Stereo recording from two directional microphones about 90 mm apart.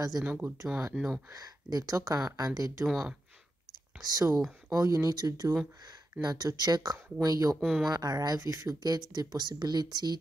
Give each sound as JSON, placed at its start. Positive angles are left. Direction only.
{"t": 0.2, "sound": "speech", "side_deg": -20}
{"t": 0.9, "sound": "speech", "side_deg": -5}
{"t": 1.3, "sound": "speech", "side_deg": -45}
{"t": 2.8, "sound": "speech", "side_deg": -5}
{"t": 4.0, "sound": "speech", "side_deg": -40}
{"t": 7.6, "sound": "speech", "side_deg": 0}
{"t": 7.9, "sound": "speech", "side_deg": -45}